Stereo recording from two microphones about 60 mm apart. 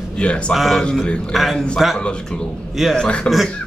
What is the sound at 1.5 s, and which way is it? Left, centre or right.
Speech, centre.